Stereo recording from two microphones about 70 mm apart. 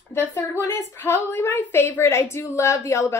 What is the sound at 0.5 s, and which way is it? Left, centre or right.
A woman's voice, left.